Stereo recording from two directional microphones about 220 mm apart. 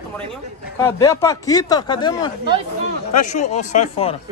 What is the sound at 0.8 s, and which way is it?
Speech, 15° left (ahead or behind).